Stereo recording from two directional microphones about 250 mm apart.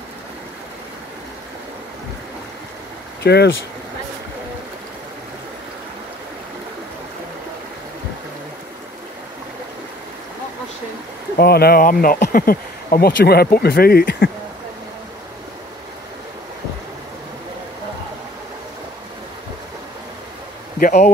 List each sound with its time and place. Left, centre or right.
3.2 s speech: left
11.3 s speech: left
20.8 s speech: left